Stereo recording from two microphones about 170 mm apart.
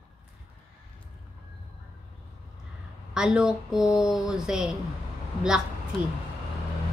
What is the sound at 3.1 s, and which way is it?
A woman's voice, 5° right (ahead or behind).